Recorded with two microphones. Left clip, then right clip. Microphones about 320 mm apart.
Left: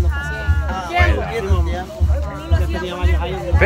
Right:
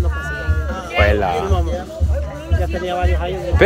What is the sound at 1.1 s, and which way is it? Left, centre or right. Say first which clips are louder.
Speech: right 5 dB; centre.